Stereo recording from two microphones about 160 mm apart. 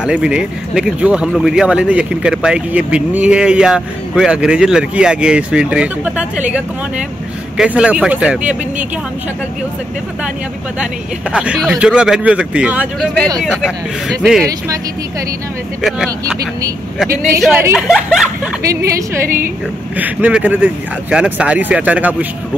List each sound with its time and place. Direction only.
0.0 s speech: 5° right (ahead or behind)
7.5 s speech: 5° right (ahead or behind)
11.3 s speech: 5° right (ahead or behind)
15.8 s speech: 5° right (ahead or behind)
17.4 s speech: 10° right (ahead or behind)
18.6 s a woman's voice: 20° right (ahead or behind)
19.2 s a woman's voice: 60° right (ahead or behind)
20.0 s speech: 10° right (ahead or behind)